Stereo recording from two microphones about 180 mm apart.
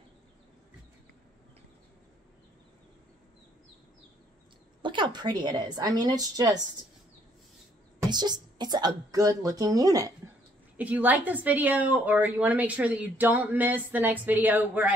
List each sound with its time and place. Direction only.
4.8 s speech: 25° right (ahead or behind)
8.1 s speech: 25° right (ahead or behind)
10.8 s a woman's voice: 10° right (ahead or behind)